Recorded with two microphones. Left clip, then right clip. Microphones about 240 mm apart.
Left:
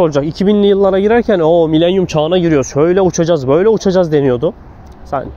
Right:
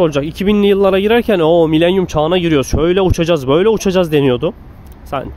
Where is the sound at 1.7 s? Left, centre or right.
Centre.